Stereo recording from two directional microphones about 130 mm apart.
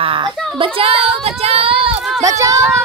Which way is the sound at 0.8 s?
50° right (ahead or behind).